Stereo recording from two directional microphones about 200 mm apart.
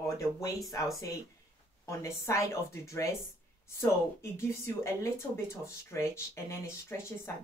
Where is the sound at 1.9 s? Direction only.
15° left (ahead or behind).